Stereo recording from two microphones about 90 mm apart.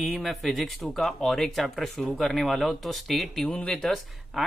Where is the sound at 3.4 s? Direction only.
15° left (ahead or behind).